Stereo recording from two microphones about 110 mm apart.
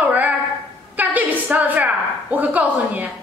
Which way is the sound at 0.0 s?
15° right (ahead or behind).